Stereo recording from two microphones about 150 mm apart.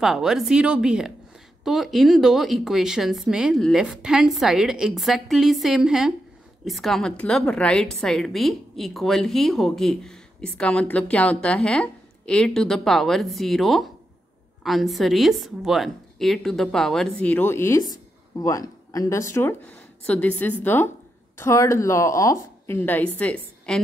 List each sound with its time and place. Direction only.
0.0 s a woman's voice: 5° right (ahead or behind)